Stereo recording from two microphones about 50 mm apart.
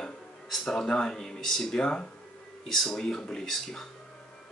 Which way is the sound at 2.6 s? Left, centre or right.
Centre.